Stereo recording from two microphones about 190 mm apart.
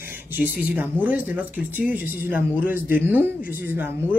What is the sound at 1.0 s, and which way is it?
Speech, 10° right (ahead or behind).